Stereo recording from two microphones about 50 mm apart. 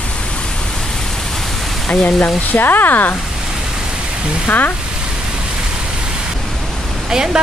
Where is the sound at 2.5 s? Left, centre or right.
Left.